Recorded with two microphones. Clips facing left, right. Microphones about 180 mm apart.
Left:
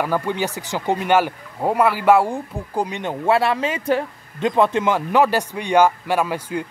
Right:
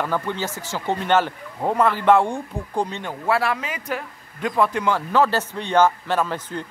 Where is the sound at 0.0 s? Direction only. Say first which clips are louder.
Left 3 dB; 10° left (ahead or behind).